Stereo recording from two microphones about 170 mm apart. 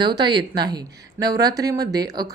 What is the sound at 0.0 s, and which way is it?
Speech, 25° right (ahead or behind).